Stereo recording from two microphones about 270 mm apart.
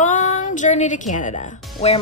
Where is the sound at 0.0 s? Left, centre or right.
Left.